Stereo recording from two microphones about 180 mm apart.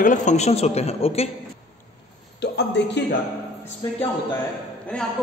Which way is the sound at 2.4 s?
70° left (ahead or behind).